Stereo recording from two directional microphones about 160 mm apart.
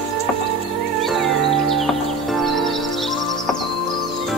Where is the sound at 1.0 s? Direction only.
Centre (ahead or behind).